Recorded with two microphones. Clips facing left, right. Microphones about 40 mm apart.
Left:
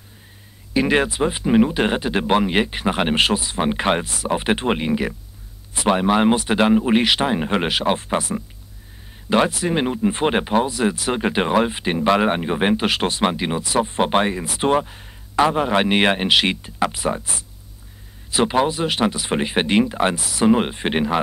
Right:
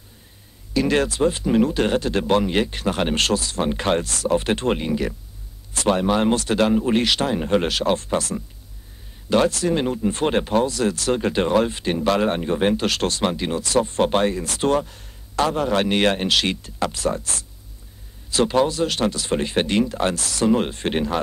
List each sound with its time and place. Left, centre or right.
0.7 s speech: left
18.3 s speech: centre